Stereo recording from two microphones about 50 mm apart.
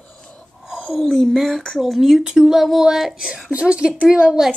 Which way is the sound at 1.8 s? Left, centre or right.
Centre.